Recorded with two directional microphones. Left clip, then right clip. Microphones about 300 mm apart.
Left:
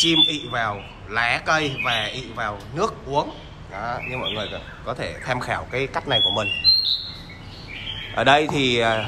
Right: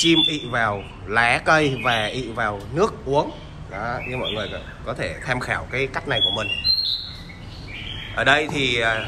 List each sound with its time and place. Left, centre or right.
0.0 s a man's voice: centre
8.2 s a man's voice: centre